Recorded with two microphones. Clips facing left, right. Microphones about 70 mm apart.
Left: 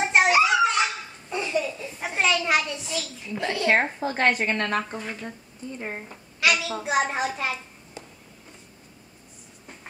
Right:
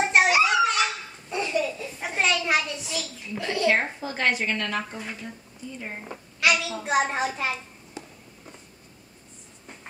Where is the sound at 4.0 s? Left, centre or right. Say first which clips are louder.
Left 3 dB; left.